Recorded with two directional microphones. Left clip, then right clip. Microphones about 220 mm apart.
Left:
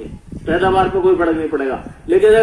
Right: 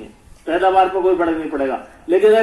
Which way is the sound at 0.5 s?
45° right (ahead or behind).